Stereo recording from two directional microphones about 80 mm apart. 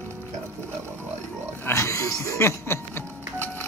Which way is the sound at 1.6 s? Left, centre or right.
Left.